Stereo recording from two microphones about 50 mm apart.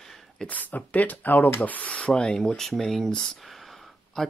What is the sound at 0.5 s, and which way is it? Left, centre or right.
Speech, left.